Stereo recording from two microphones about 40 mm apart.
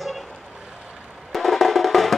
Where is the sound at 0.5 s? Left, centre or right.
Centre.